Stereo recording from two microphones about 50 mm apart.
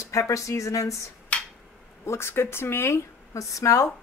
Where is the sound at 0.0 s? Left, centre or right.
Left.